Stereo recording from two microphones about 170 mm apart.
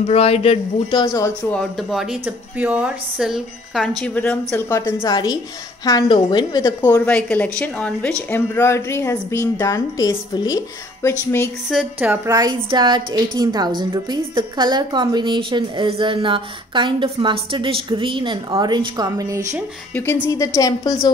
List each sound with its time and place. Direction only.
0.0 s a man's voice: 35° left (ahead or behind)
1.0 s a woman's voice: 20° left (ahead or behind)
1.5 s a woman's voice: 5° left (ahead or behind); by 6.7 s 25° left (ahead or behind)
6.8 s a woman's voice: 10° left (ahead or behind)
11.7 s a woman's voice: 10° right (ahead or behind)
20.2 s a woman's voice: 20° left (ahead or behind)